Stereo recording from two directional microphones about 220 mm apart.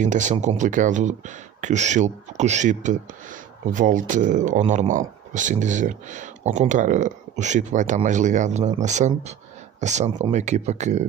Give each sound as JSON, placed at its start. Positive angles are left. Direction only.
{"t": 0.0, "sound": "speech", "side_deg": -35}